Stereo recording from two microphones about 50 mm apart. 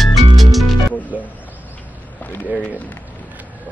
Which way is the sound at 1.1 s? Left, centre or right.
Right.